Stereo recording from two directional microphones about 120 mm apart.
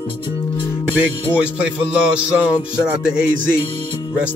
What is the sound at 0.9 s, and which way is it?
Music, 10° right (ahead or behind).